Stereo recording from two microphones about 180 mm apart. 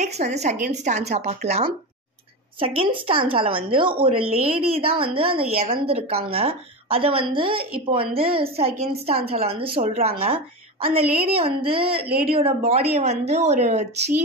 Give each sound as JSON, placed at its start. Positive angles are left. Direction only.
{"t": 0.0, "sound": "a woman's voice", "side_deg": -40}